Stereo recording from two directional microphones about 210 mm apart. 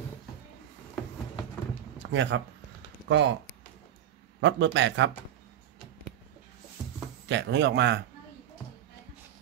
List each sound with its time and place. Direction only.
2.0 s speech: 60° right (ahead or behind)
4.4 s a man's voice: 60° right (ahead or behind)
7.2 s a man's voice: 55° right (ahead or behind)